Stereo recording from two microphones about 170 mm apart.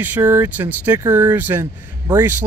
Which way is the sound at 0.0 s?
10° right (ahead or behind).